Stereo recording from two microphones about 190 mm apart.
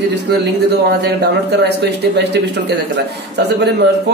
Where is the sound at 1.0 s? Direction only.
60° right (ahead or behind).